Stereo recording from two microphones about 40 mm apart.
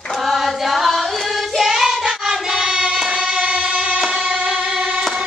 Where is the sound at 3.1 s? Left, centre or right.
Right.